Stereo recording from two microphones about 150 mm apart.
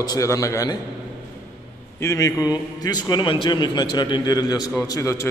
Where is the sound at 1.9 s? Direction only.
20° left (ahead or behind).